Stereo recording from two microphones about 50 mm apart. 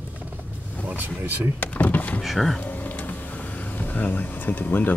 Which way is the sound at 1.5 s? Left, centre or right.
Left.